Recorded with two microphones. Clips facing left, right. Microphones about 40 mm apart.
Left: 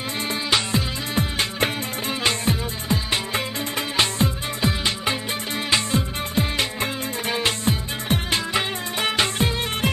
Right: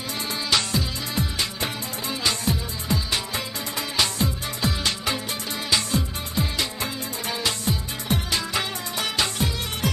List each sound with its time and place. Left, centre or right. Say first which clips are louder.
0.7 s music: left 2 dB; left
4.6 s music: left 2 dB; left
5.7 s music: left 2 dB; left